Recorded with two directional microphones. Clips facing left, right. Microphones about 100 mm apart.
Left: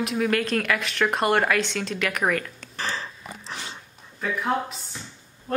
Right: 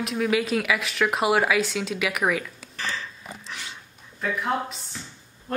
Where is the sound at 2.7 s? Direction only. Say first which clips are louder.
Left 2 dB; 35° left (ahead or behind).